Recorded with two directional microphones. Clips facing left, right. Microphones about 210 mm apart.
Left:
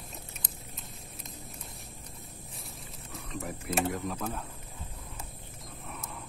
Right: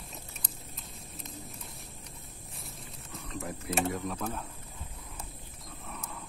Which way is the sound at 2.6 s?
Centre (ahead or behind).